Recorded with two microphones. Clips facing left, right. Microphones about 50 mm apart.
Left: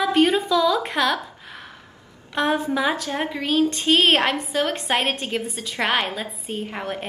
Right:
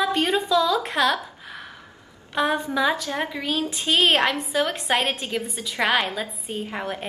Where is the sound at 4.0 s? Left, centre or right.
Centre.